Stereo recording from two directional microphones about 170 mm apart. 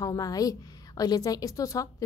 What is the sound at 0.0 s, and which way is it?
A woman's voice, 20° left (ahead or behind).